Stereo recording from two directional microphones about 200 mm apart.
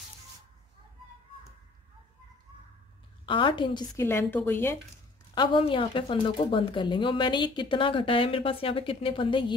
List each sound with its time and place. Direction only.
3.3 s a woman's voice: 25° left (ahead or behind)
5.3 s speech: 25° left (ahead or behind)